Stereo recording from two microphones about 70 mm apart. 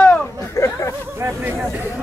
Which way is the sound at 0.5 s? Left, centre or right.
Left.